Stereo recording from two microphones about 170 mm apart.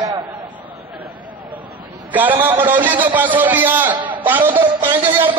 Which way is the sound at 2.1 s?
10° right (ahead or behind).